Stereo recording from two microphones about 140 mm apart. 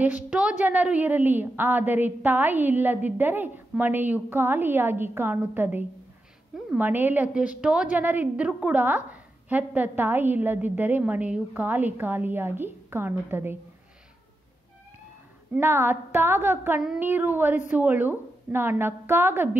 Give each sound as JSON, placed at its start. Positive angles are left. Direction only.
{"t": 0.0, "sound": "a woman's voice", "side_deg": -10}
{"t": 15.5, "sound": "a woman's voice", "side_deg": -15}